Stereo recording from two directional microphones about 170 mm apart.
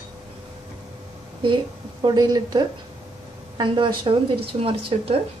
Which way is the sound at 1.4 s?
25° right (ahead or behind).